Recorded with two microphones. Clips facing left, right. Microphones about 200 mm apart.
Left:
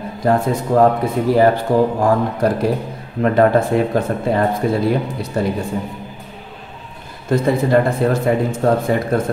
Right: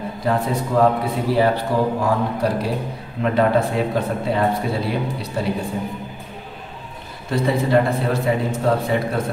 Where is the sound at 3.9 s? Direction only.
50° left (ahead or behind).